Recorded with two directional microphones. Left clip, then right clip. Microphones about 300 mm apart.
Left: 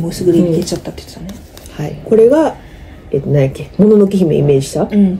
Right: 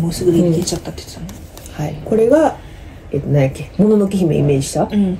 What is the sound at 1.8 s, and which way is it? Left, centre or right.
Speech, centre.